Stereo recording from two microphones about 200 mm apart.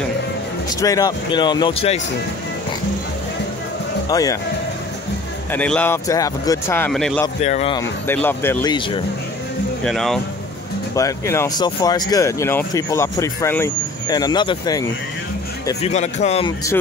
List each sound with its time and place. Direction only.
0.7 s speech: 15° left (ahead or behind)
4.1 s speech: 20° left (ahead or behind)
5.5 s speech: 5° left (ahead or behind)
7.4 s speech: 35° left (ahead or behind)
7.7 s speech: 10° left (ahead or behind)
8.7 s speech: 25° left (ahead or behind)
9.8 s speech: centre (ahead or behind)
11.0 s speech: 15° left (ahead or behind)
15.8 s speech: 35° left (ahead or behind)